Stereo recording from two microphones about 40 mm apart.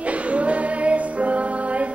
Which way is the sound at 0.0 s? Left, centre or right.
Right.